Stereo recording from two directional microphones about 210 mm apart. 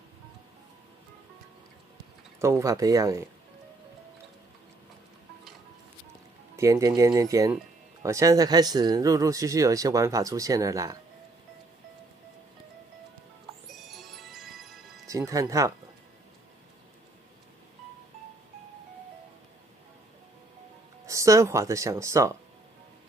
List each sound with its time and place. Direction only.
2.4 s speech: 15° right (ahead or behind)
6.5 s speech: 15° right (ahead or behind)
13.8 s music: centre (ahead or behind)
15.0 s speech: 15° right (ahead or behind)
21.0 s speech: 15° right (ahead or behind)